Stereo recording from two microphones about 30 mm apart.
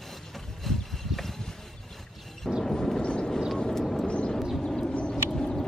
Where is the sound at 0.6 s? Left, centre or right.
Centre.